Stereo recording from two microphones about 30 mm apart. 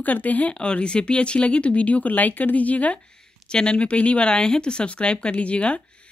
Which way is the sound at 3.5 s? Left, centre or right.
Left.